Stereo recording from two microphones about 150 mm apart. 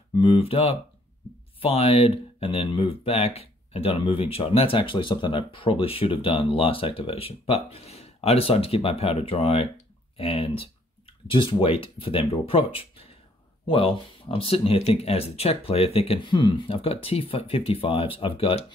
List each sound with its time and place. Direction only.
0.1 s speech: 35° left (ahead or behind)